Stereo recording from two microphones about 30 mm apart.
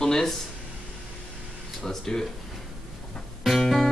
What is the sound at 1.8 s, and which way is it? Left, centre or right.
Speech, centre.